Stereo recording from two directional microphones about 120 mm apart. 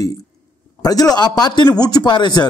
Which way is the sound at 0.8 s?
30° left (ahead or behind).